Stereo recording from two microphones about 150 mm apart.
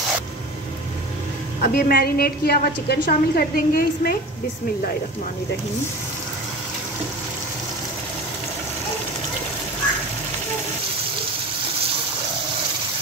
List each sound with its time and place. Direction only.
1.6 s a woman's voice: 80° left